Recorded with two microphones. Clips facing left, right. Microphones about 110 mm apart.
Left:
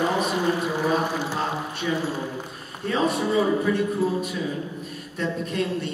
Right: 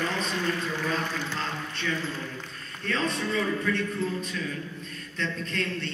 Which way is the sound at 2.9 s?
15° left (ahead or behind).